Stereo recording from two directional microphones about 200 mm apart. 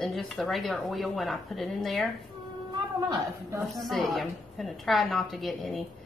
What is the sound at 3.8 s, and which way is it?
Speech, centre (ahead or behind).